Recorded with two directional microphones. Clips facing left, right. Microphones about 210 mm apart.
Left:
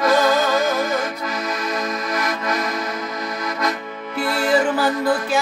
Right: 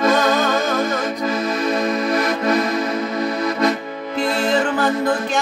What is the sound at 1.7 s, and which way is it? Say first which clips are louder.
Music: right 6 dB; 30° right (ahead or behind).